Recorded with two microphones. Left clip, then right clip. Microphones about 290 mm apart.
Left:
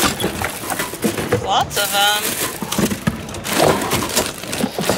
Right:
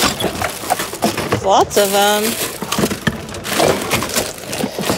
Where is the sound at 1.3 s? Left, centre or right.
Right.